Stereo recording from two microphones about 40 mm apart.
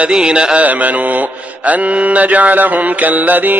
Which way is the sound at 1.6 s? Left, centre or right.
Right.